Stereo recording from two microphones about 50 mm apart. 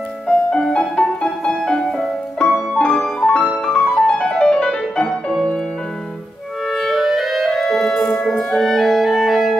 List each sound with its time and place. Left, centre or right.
0.3 s music: centre
6.7 s clarinet: centre